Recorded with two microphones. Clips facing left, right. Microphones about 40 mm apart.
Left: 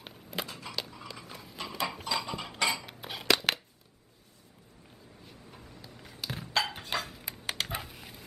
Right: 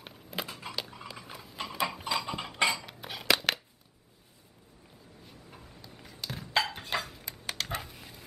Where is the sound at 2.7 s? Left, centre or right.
Centre.